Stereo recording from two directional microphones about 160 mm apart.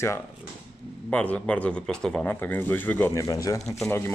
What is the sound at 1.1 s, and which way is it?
Speech, 10° left (ahead or behind).